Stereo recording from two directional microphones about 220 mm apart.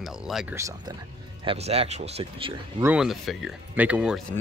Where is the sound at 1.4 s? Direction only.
30° right (ahead or behind).